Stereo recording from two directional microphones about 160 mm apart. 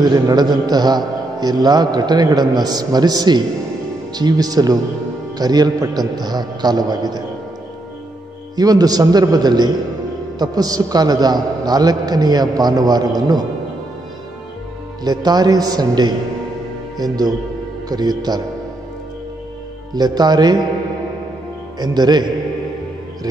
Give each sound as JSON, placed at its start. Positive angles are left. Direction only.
{"t": 0.0, "sound": "a man's voice", "side_deg": -25}
{"t": 8.5, "sound": "a man's voice", "side_deg": -25}
{"t": 15.0, "sound": "a man's voice", "side_deg": -25}
{"t": 19.9, "sound": "a man's voice", "side_deg": -25}
{"t": 21.7, "sound": "a man's voice", "side_deg": -25}